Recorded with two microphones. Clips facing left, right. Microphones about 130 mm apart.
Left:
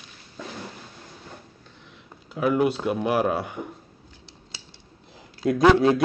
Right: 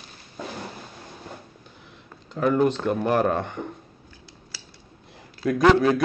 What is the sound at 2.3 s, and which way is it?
Speech, 10° left (ahead or behind).